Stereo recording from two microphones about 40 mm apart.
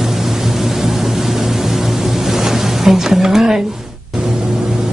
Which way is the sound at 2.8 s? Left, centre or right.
Centre.